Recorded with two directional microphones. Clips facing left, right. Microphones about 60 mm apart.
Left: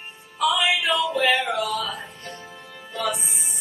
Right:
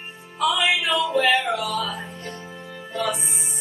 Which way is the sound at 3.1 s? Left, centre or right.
Centre.